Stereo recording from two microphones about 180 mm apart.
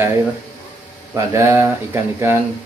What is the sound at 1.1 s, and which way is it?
Speech, 15° right (ahead or behind).